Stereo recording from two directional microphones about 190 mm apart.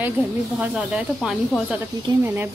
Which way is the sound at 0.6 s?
5° right (ahead or behind).